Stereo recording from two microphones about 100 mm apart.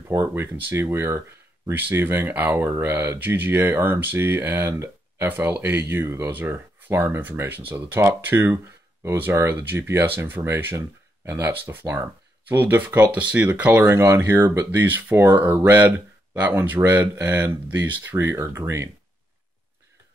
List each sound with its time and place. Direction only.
0.3 s speech: 20° right (ahead or behind)